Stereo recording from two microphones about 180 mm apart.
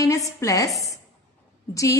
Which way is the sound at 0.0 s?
20° left (ahead or behind).